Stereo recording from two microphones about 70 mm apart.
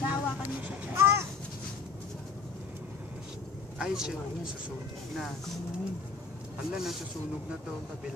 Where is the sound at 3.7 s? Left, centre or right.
Centre.